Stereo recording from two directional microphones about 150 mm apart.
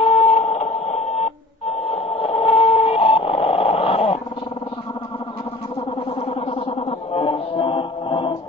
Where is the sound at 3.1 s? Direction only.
40° left (ahead or behind).